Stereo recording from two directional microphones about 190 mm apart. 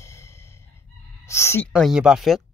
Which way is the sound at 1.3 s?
15° left (ahead or behind).